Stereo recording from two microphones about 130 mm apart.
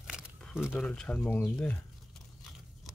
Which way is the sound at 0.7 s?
5° left (ahead or behind).